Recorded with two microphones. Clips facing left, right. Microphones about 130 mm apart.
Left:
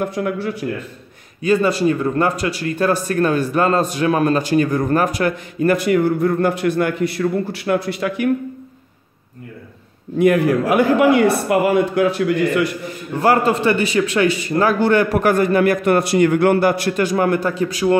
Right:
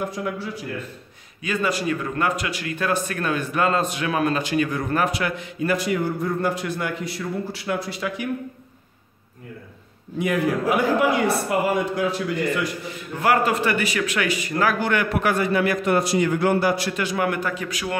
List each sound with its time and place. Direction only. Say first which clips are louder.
0.1 s a man's voice: left 7 dB; 60° left (ahead or behind)
1.4 s speech: left 8 dB; 30° left (ahead or behind); by 8.3 s 60° left (ahead or behind)
10.1 s a man's voice: left 8 dB; 55° left (ahead or behind)
13.2 s speech: left 5 dB; 30° left (ahead or behind)